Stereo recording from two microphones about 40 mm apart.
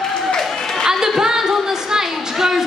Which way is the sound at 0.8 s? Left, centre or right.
Centre.